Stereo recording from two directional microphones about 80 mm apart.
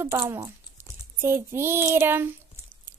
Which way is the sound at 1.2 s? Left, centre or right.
Right.